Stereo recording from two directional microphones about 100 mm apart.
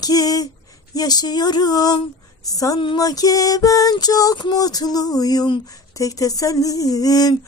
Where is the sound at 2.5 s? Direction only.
35° left (ahead or behind).